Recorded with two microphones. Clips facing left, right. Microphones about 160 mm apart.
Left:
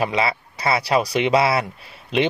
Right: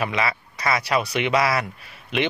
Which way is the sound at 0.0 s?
30° left (ahead or behind).